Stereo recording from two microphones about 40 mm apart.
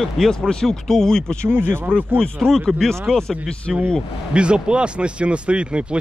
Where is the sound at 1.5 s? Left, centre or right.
Right.